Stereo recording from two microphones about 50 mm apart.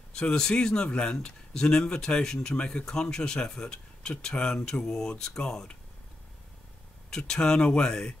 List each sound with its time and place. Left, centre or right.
0.1 s speech: centre
7.1 s speech: centre